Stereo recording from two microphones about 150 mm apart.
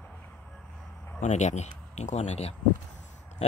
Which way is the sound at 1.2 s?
50° left (ahead or behind).